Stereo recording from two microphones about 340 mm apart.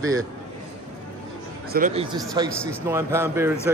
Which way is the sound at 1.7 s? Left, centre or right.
Centre.